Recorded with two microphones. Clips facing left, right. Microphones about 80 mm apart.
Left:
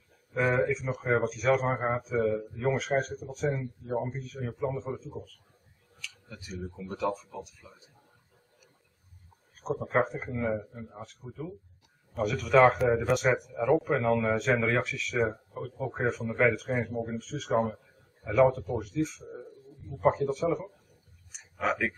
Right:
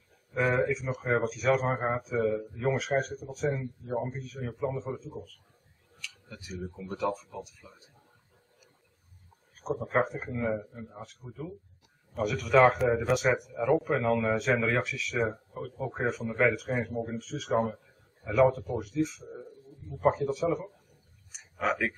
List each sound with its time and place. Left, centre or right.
0.4 s a man's voice: centre
6.3 s a man's voice: centre
9.8 s a man's voice: centre
15.3 s speech: centre
15.9 s a man's voice: centre
21.3 s clicking: centre